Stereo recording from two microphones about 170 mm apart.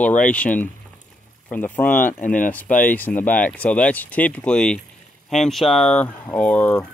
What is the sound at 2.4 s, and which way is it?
Speech, 10° left (ahead or behind).